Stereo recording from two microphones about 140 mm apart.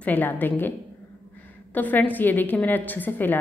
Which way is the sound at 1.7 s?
10° left (ahead or behind).